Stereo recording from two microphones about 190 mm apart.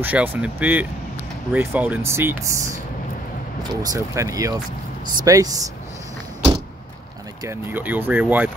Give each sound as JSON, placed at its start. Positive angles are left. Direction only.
{"t": 0.0, "sound": "speech", "side_deg": -10}
{"t": 7.4, "sound": "speech", "side_deg": -10}